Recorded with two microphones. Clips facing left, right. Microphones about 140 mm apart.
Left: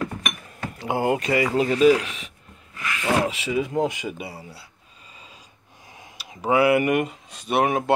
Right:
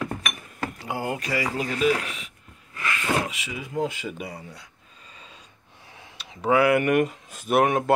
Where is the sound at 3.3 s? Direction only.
25° left (ahead or behind).